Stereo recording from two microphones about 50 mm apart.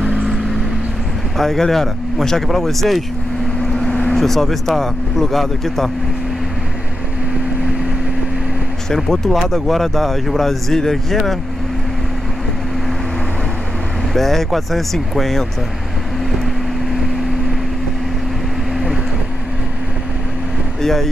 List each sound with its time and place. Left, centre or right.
0.0 s vehicle: left
1.4 s speech: centre
8.9 s speech: centre
14.1 s speech: centre
20.8 s speech: centre